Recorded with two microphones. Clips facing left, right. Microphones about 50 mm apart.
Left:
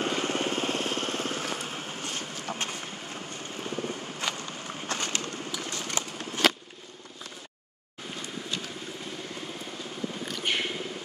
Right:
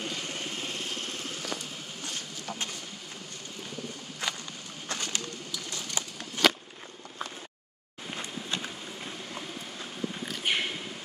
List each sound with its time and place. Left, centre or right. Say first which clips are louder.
0.1 s lawn mower: left 8 dB; left
1.6 s vehicle: left 5 dB; left
2.0 s a sound: left 1 dB; left
4.8 s bird: left 2 dB; left
5.5 s a sound: left 3 dB; left
10.2 s mouse: even; centre